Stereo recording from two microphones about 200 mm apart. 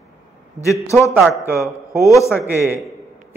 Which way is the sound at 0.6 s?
15° left (ahead or behind).